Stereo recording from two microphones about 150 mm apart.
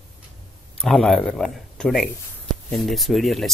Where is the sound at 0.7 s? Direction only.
Centre (ahead or behind).